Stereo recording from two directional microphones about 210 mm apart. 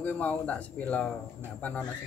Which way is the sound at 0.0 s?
5° left (ahead or behind).